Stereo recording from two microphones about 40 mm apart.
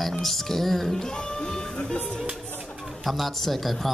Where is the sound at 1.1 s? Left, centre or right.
Centre.